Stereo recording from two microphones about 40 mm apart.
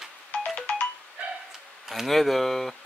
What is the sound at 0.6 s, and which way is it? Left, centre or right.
Ringtone, left.